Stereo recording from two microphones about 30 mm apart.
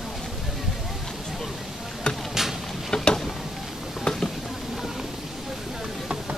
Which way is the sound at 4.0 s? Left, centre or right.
Centre.